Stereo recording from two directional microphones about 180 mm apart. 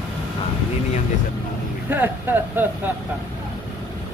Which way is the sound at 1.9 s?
10° right (ahead or behind).